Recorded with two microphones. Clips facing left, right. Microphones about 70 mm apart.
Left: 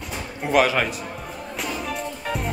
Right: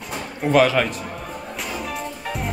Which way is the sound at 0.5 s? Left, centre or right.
Centre.